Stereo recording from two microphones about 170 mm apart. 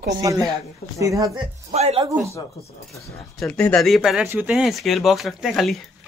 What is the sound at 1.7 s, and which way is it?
Speech, 40° right (ahead or behind).